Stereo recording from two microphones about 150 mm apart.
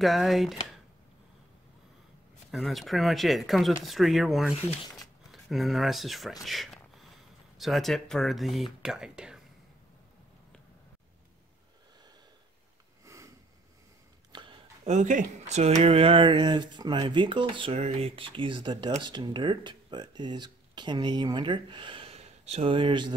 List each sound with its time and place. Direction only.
0.0 s speech: centre (ahead or behind)
2.5 s speech: centre (ahead or behind)
13.0 s sniff: 20° right (ahead or behind)
14.3 s a sound: 35° right (ahead or behind)
14.9 s speech: 55° right (ahead or behind); by 23.1 s 30° right (ahead or behind)